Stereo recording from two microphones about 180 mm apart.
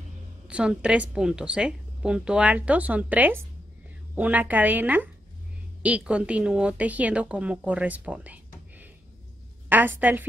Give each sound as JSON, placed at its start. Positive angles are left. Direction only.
{"t": 0.5, "sound": "a woman's voice", "side_deg": -5}